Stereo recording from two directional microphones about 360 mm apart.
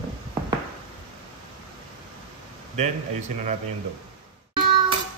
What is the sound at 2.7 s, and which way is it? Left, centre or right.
Speech, centre.